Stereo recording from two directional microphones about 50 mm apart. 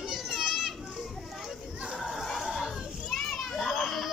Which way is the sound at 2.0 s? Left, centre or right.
Centre.